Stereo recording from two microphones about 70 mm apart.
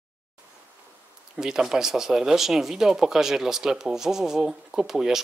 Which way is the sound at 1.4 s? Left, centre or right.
Centre.